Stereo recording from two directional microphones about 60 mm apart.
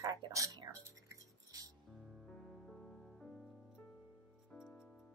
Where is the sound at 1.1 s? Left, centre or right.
Right.